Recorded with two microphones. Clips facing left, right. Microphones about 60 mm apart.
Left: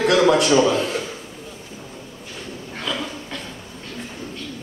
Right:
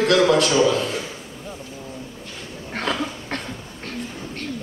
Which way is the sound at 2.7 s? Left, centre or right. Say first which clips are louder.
Right 3 dB; right.